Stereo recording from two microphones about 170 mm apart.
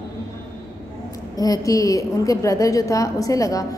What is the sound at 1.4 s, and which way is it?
A woman's voice, 20° left (ahead or behind).